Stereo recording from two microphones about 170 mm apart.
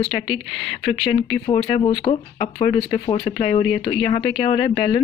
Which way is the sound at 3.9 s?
35° left (ahead or behind).